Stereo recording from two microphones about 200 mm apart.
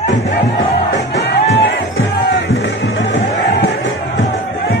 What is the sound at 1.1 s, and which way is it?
Music, 65° left (ahead or behind).